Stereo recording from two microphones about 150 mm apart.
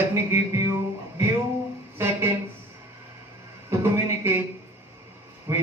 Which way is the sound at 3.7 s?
15° right (ahead or behind).